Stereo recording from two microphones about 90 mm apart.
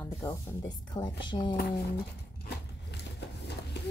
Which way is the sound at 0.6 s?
50° left (ahead or behind).